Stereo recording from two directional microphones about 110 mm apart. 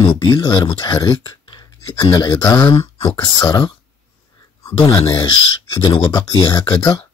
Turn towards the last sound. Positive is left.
turn(degrees=35)  # may be behind; listen again after turning